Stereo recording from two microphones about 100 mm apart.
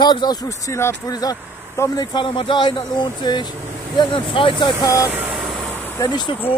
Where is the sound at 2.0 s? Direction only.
50° left (ahead or behind).